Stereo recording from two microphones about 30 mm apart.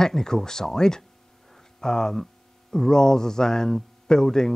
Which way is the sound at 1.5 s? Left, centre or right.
Centre.